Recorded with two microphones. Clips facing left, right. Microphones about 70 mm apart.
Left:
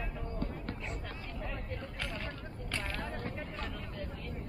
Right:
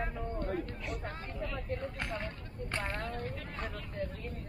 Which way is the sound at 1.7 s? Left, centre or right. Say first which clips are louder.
Right 4 dB; right.